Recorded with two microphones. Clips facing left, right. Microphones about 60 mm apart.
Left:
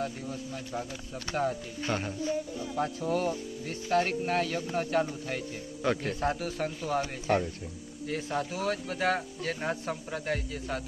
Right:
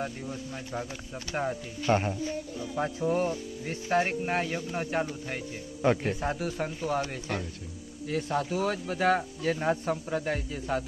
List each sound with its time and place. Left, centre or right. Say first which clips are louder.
1.3 s speech: left 1 dB; centre
7.0 s speech: left 4 dB; centre
8.1 s speech: right 3 dB; centre